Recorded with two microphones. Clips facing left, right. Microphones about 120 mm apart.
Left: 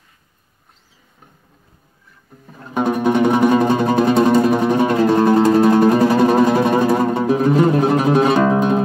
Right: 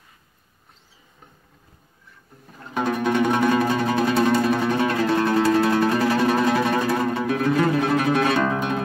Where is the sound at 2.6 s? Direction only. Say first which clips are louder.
Left 5 dB; 15° left (ahead or behind).